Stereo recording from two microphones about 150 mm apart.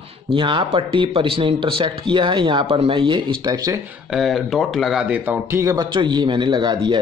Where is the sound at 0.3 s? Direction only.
30° right (ahead or behind).